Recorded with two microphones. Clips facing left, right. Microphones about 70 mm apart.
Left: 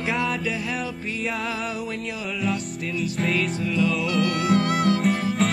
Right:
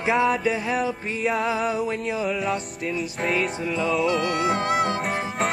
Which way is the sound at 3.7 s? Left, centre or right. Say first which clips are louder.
Right 1 dB; right.